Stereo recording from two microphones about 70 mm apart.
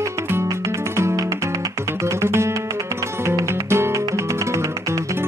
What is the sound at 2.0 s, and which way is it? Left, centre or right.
Music, right.